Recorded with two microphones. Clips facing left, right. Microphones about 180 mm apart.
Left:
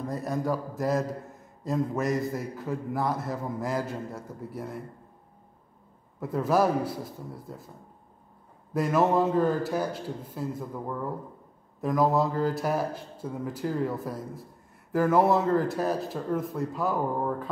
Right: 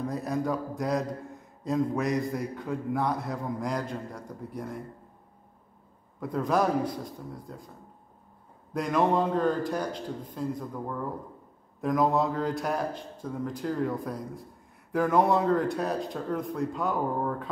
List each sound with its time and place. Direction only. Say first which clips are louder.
0.0 s speech: even; centre (ahead or behind)
6.1 s speech: left 2 dB; 5° left (ahead or behind)
8.7 s speech: left 2 dB; 5° left (ahead or behind)